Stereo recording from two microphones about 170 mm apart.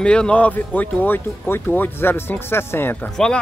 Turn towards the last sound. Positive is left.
turn(degrees=5)  # may be behind; listen again after turning